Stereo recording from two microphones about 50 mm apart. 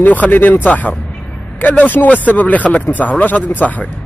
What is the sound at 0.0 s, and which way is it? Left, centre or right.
Speech, left.